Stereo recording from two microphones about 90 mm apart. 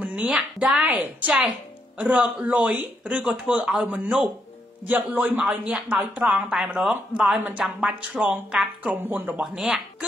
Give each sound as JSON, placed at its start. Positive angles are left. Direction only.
{"t": 0.0, "sound": "a woman's voice", "side_deg": -10}
{"t": 7.6, "sound": "a man's voice", "side_deg": -5}
{"t": 9.4, "sound": "speech", "side_deg": -5}